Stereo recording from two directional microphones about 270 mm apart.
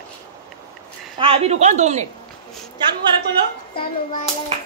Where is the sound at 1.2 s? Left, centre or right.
Right.